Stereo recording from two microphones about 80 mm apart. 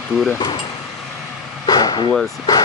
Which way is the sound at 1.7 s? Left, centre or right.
Left.